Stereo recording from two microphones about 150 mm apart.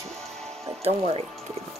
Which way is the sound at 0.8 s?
45° right (ahead or behind).